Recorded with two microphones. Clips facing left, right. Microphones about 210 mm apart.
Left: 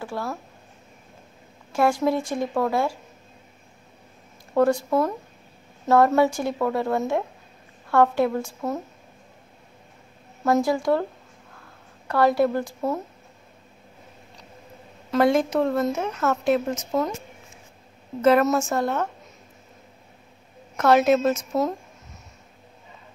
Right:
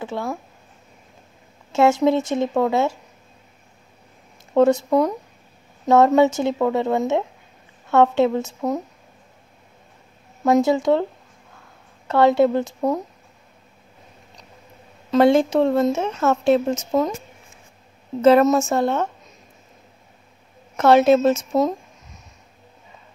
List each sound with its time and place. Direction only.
0.0 s speech: 20° right (ahead or behind)
1.7 s speech: 25° right (ahead or behind)
4.6 s speech: 20° right (ahead or behind)
10.4 s speech: 20° right (ahead or behind)
12.1 s speech: 25° right (ahead or behind)
15.0 s speech: 25° right (ahead or behind)
18.2 s speech: 25° right (ahead or behind)
20.7 s speech: 30° right (ahead or behind)